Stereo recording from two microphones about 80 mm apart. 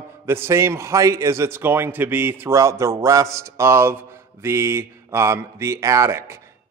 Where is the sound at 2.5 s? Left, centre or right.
Right.